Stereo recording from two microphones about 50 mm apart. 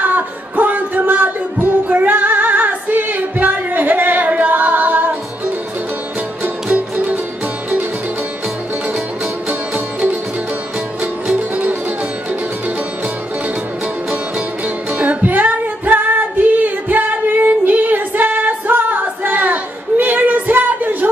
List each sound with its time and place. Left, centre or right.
0.0 s music: right
6.4 s music: right
9.5 s music: right
14.9 s music: right